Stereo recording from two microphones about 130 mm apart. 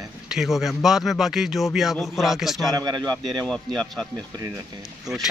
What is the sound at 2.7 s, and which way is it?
Speech, 30° right (ahead or behind).